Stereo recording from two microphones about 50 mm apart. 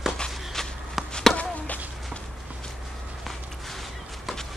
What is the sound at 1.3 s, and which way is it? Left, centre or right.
Chop, left.